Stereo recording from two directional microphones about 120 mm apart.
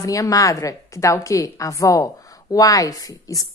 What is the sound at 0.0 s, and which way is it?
A woman's voice, 30° left (ahead or behind).